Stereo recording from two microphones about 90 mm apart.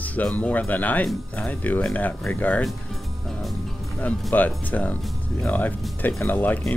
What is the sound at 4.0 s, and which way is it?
Speech, 20° left (ahead or behind).